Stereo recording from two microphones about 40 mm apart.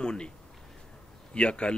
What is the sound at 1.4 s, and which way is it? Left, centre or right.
Speech, left.